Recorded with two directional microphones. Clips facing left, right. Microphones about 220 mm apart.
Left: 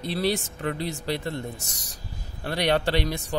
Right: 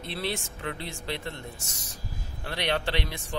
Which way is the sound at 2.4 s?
40° left (ahead or behind).